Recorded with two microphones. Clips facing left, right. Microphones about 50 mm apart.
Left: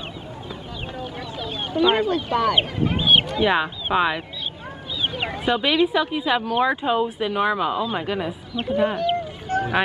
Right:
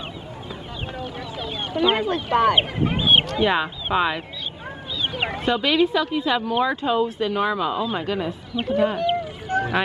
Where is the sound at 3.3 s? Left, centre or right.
Centre.